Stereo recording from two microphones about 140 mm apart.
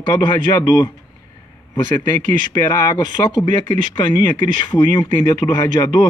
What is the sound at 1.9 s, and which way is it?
Speech, 30° left (ahead or behind).